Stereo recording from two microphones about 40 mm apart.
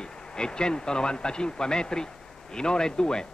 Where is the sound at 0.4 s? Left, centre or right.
Left.